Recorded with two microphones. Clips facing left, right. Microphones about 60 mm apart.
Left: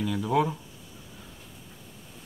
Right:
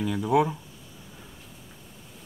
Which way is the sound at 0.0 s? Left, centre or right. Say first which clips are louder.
Right 2 dB; centre.